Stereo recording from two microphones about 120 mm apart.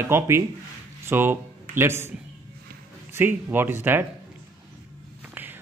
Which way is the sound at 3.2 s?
15° right (ahead or behind).